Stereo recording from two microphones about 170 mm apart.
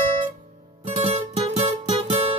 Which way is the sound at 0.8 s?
40° right (ahead or behind).